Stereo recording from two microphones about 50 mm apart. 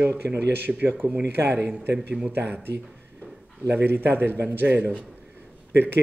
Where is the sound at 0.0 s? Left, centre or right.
Right.